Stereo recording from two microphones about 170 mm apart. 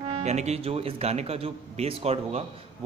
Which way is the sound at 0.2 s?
40° right (ahead or behind).